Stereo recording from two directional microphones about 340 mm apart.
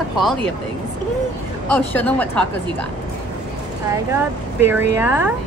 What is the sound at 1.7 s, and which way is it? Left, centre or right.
Speech, centre.